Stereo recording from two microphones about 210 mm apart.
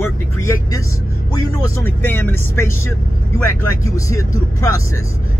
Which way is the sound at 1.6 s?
10° left (ahead or behind).